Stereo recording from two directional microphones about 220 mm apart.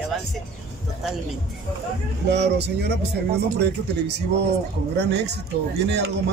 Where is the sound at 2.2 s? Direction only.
50° right (ahead or behind).